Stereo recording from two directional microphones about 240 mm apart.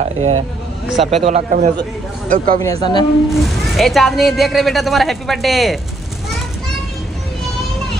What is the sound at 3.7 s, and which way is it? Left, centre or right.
Speech, centre.